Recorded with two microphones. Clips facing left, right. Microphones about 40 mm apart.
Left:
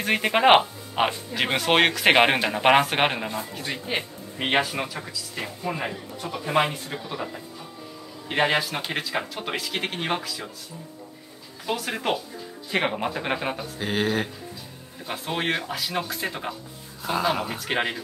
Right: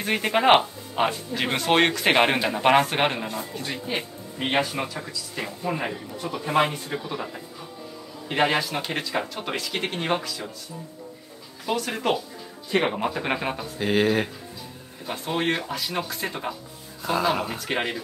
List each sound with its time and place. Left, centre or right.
0.0 s speech: centre
3.9 s speech: left
4.7 s speech: centre
11.6 s speech: centre